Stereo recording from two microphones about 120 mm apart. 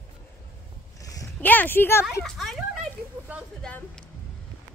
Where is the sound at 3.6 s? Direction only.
5° left (ahead or behind).